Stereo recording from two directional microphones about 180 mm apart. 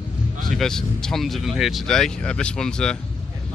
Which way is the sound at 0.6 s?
5° left (ahead or behind).